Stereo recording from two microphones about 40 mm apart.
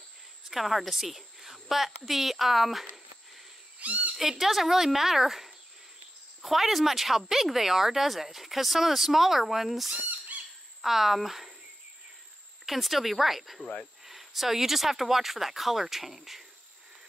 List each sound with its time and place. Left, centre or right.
0.5 s speech: centre
3.8 s speech: right
4.2 s speech: centre
12.6 s speech: centre